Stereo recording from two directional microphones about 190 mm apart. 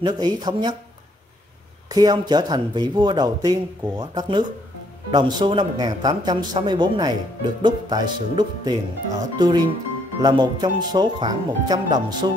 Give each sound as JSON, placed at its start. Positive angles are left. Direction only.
{"t": 0.0, "sound": "speech", "side_deg": -20}
{"t": 1.9, "sound": "speech", "side_deg": -20}